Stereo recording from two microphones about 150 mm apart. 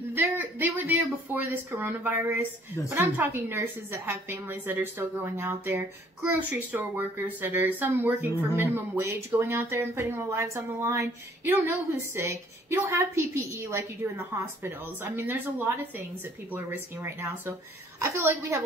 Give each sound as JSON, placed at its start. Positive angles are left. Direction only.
{"t": 0.1, "sound": "a woman's voice", "side_deg": -15}